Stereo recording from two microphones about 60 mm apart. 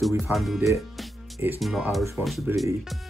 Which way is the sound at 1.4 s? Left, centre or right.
Right.